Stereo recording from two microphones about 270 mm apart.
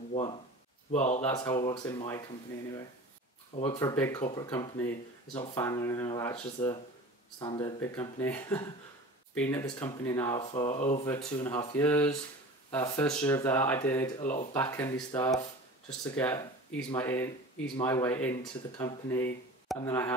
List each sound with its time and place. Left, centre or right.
0.1 s speech: centre
1.2 s speech: centre
3.5 s speech: centre
4.2 s speech: left
4.5 s speech: centre
11.1 s speech: centre
14.2 s speech: left
14.5 s speech: centre